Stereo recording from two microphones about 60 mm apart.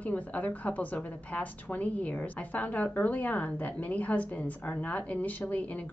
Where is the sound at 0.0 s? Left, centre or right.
Left.